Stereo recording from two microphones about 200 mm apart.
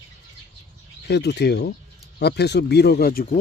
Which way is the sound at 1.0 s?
60° left (ahead or behind).